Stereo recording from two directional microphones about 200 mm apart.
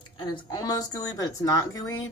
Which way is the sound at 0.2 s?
20° left (ahead or behind).